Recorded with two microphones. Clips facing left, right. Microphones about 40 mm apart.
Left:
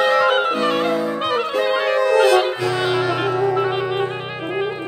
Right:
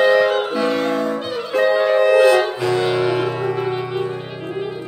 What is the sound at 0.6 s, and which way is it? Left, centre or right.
Music, centre.